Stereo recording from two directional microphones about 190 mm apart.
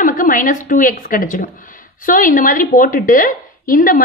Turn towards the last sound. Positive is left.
turn(degrees=45)  # may be behind; listen again after turning